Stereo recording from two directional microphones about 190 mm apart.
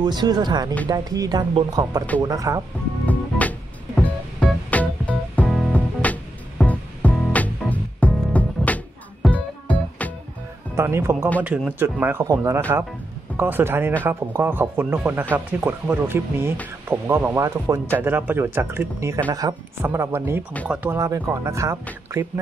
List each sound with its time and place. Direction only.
0.0 s speech: 20° right (ahead or behind)
3.1 s music: 10° left (ahead or behind)
10.8 s speech: 15° right (ahead or behind)